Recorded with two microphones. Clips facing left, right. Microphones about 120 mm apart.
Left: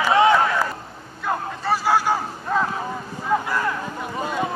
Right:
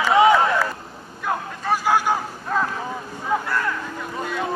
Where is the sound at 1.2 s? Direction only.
5° left (ahead or behind).